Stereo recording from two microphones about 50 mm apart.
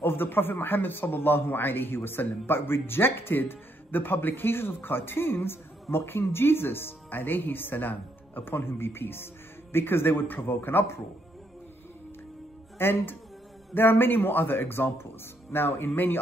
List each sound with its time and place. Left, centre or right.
0.0 s a man's voice: left
12.7 s a man's voice: left